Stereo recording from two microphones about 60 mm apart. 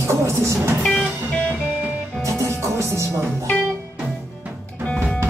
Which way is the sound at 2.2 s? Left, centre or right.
Right.